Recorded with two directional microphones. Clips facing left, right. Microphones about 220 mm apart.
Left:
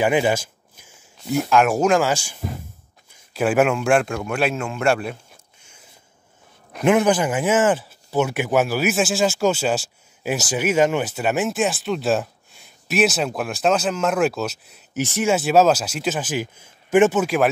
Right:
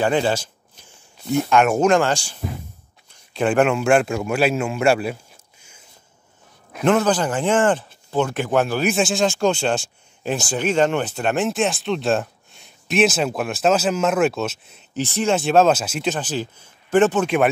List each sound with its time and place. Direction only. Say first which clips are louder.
0.0 s speech: left 1 dB; 10° left (ahead or behind); by 5.1 s 5° right (ahead or behind)
6.8 s speech: left 1 dB; 15° left (ahead or behind)